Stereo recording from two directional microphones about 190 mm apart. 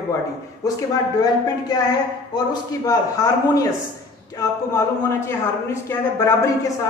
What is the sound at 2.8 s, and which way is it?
A man's voice, 20° left (ahead or behind).